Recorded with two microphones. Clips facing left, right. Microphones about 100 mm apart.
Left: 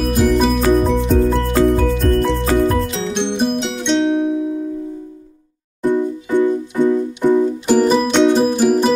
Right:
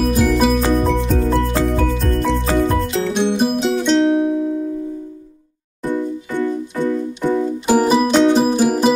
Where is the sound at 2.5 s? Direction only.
Centre (ahead or behind).